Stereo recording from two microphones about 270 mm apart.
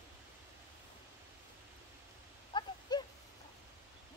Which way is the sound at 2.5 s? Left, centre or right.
Centre.